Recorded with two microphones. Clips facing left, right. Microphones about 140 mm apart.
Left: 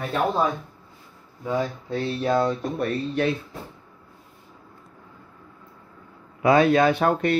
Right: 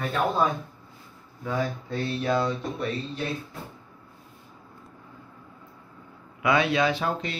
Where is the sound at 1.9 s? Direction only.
30° left (ahead or behind).